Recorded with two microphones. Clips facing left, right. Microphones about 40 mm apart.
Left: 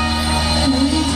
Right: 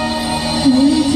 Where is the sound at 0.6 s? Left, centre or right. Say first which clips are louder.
Right 8 dB; left.